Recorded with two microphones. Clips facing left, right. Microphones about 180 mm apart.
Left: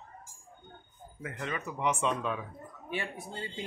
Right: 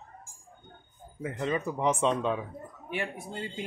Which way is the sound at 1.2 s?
25° right (ahead or behind).